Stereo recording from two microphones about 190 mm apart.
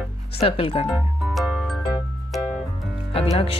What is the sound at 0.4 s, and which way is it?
Speech, 30° left (ahead or behind).